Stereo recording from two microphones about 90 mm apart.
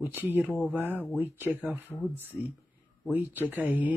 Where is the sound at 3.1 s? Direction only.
20° right (ahead or behind).